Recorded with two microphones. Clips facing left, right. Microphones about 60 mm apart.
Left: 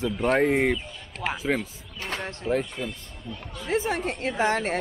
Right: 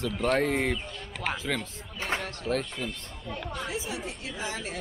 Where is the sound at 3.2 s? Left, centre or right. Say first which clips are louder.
Right 3 dB; right.